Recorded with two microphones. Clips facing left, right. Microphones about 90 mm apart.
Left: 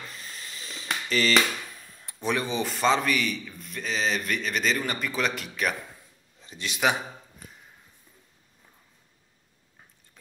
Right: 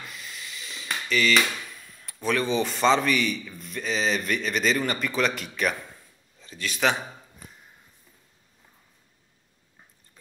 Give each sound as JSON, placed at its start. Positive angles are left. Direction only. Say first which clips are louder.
{"t": 0.0, "sound": "a sound", "louder": "right 1 dB", "side_deg": 35}
{"t": 2.0, "sound": "speech", "louder": "right 3 dB", "side_deg": 20}
{"t": 2.7, "sound": "a man's voice", "louder": "right 1 dB", "side_deg": 5}
{"t": 6.4, "sound": "a man's voice", "louder": "right 1 dB", "side_deg": 20}